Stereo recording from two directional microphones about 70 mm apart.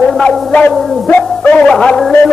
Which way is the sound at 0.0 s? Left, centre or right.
Centre.